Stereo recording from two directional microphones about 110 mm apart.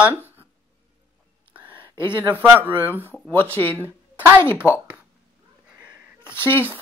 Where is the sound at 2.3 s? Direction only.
15° right (ahead or behind).